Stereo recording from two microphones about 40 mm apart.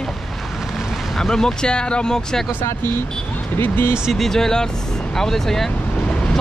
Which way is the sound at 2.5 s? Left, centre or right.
Left.